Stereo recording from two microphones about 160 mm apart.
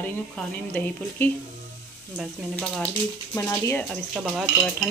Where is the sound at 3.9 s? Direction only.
Centre (ahead or behind).